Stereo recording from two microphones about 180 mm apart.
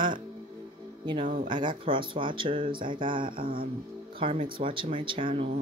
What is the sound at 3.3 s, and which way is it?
Music, 50° right (ahead or behind).